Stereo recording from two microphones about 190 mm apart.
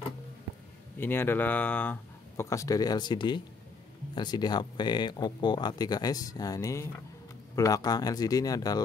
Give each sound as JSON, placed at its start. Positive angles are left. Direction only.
{"t": 0.9, "sound": "speech", "side_deg": 10}